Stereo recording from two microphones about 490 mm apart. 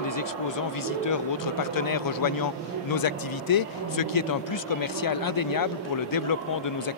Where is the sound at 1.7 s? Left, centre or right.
Left.